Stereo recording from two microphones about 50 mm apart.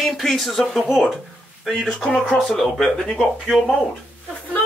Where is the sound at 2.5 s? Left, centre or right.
Centre.